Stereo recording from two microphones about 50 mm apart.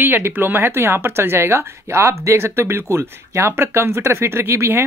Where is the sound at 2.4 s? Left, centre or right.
Right.